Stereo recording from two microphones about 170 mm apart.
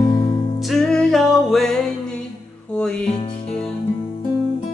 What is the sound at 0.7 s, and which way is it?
Music, centre (ahead or behind).